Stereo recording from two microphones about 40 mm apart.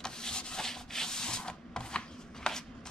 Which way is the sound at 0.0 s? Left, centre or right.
Centre.